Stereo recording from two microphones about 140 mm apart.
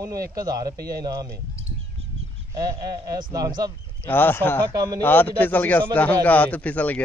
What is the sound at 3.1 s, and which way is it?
Speech, 25° right (ahead or behind).